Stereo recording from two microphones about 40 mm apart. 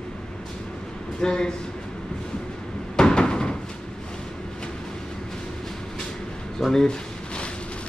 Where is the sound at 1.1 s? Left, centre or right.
Centre.